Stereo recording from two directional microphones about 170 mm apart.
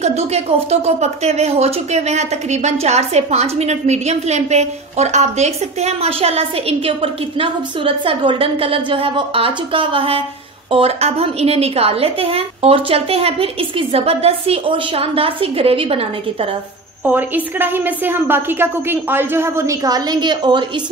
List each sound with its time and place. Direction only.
0.0 s a woman's voice: 40° right (ahead or behind)
17.0 s a woman's voice: 10° right (ahead or behind); by 20.6 s 25° right (ahead or behind)